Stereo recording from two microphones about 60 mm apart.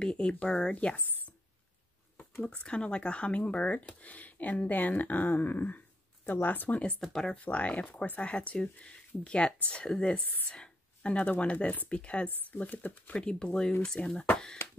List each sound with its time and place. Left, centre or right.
0.0 s speech: centre
1.0 s a sound: right
2.4 s speech: centre
7.0 s speech: centre
7.3 s speech: left
12.8 s speech: left
13.2 s speech: centre